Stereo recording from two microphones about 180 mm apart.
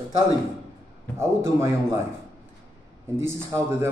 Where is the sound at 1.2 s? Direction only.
15° right (ahead or behind).